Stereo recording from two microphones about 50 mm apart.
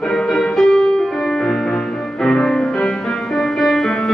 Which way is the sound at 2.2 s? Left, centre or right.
Centre.